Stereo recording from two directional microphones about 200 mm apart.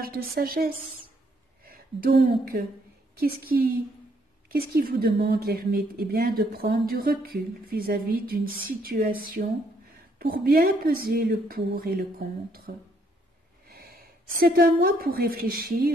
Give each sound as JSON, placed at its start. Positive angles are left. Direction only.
{"t": 0.0, "sound": "a woman's voice", "side_deg": -50}